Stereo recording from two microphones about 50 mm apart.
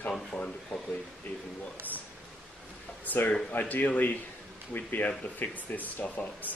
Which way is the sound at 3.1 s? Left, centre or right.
Left.